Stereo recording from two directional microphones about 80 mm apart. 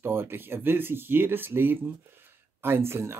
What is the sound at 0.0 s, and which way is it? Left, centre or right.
Speech, right.